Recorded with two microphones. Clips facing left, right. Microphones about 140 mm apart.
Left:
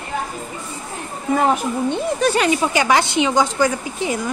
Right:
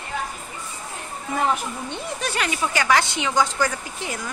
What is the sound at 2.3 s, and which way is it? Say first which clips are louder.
A woman's voice: left 7 dB; 25° left (ahead or behind).